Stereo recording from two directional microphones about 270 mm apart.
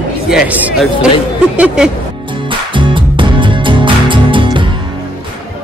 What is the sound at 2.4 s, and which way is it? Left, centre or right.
Music, centre.